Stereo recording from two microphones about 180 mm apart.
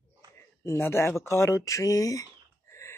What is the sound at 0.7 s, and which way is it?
Speech, 15° left (ahead or behind).